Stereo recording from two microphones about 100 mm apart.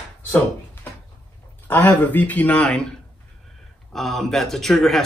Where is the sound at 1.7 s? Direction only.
15° left (ahead or behind).